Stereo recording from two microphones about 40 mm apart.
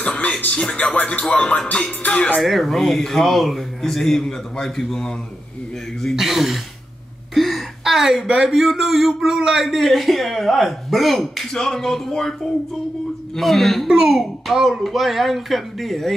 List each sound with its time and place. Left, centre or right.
0.0 s music: left
0.5 s speech: centre
1.3 s music: left
2.4 s a man's voice: centre
6.1 s a man's voice: centre
7.3 s a sound: centre
7.8 s a man's voice: centre
13.4 s a man's voice: centre
13.8 s a child's voice: centre